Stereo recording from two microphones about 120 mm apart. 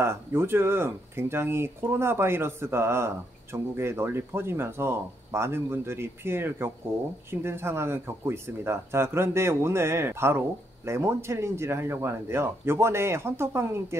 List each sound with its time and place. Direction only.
0.0 s speech: 20° right (ahead or behind)